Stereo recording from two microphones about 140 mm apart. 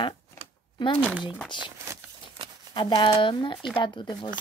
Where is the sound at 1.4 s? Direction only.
35° left (ahead or behind).